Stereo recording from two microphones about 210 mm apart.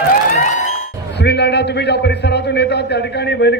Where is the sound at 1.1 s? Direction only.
55° left (ahead or behind).